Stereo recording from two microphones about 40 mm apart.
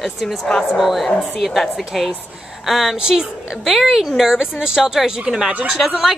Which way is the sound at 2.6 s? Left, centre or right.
Centre.